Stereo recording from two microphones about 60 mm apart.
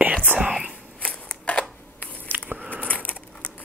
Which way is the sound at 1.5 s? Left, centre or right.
Centre.